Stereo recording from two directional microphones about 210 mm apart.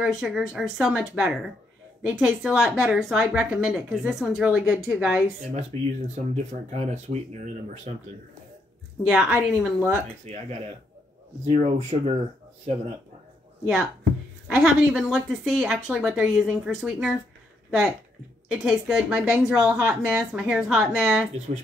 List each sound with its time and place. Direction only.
0.0 s a woman's voice: centre (ahead or behind)
5.5 s speech: 35° right (ahead or behind)
9.0 s a woman's voice: 5° right (ahead or behind)
10.3 s speech: 30° right (ahead or behind)
11.5 s speech: 30° right (ahead or behind)
14.5 s a woman's voice: 5° right (ahead or behind)